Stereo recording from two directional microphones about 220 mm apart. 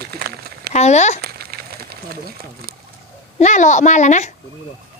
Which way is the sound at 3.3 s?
35° left (ahead or behind).